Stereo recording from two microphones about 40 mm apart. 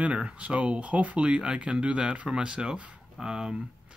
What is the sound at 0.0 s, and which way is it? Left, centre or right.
Speech, right.